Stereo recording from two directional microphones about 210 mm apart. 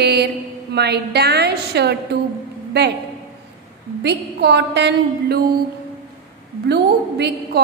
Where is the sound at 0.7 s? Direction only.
50° right (ahead or behind).